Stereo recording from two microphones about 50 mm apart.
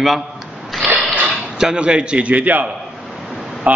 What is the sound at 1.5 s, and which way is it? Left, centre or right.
A man's voice, centre.